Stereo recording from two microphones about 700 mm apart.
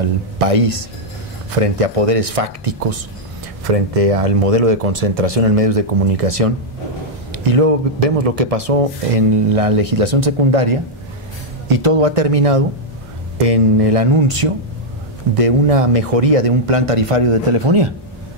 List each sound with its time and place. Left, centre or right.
0.0 s speech: right